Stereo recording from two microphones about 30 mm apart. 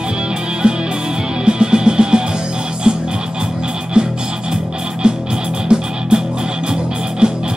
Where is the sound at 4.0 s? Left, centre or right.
Right.